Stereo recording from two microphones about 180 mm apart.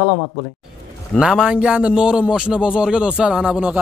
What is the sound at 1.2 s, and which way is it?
A man's voice, 5° right (ahead or behind).